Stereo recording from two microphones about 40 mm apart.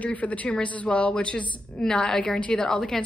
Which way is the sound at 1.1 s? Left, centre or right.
Left.